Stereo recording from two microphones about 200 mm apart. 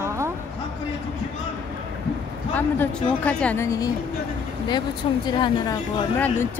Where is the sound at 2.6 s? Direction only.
10° left (ahead or behind).